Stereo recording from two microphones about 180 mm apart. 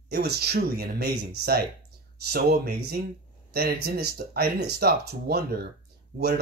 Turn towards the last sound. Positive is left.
turn(degrees=-70)  # may be behind; listen again after turning